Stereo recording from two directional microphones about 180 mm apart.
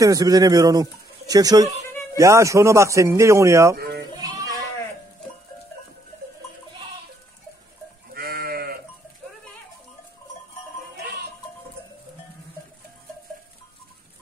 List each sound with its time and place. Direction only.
0.0 s speech: 20° right (ahead or behind)
3.7 s speech: 60° right (ahead or behind)
4.1 s goat: 20° right (ahead or behind)
8.1 s sheep: 60° right (ahead or behind)